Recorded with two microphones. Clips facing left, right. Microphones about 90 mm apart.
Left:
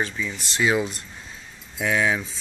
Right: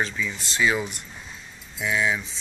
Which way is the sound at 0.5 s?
25° left (ahead or behind).